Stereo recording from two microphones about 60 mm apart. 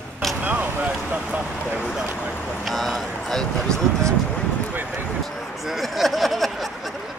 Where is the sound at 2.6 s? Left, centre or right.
Centre.